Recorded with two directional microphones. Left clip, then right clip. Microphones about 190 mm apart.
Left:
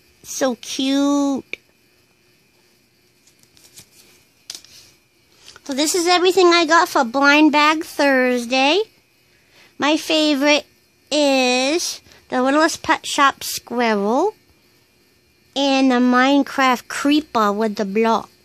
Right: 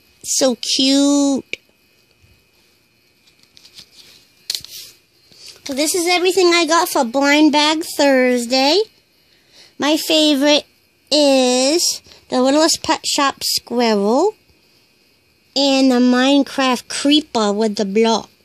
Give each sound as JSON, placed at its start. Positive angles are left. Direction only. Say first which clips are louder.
{"t": 0.2, "sound": "a woman's voice", "louder": "right 5 dB", "side_deg": -15}
{"t": 3.5, "sound": "a sound", "louder": "right 6 dB", "side_deg": 35}
{"t": 5.7, "sound": "a woman's voice", "louder": "even", "side_deg": 5}
{"t": 15.5, "sound": "a woman's voice", "louder": "right 2 dB", "side_deg": -15}